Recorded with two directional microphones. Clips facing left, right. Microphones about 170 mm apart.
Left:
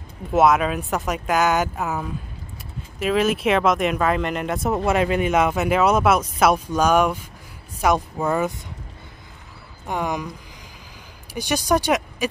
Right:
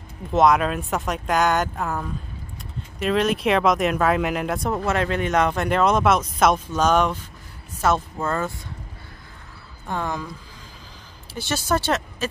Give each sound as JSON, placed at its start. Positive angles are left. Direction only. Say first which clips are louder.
{"t": 0.3, "sound": "speech", "louder": "left 1 dB", "side_deg": 5}
{"t": 4.8, "sound": "speech", "louder": "left 4 dB", "side_deg": 10}
{"t": 9.8, "sound": "speech", "louder": "left 2 dB", "side_deg": 15}
{"t": 11.3, "sound": "speech", "louder": "left 3 dB", "side_deg": 15}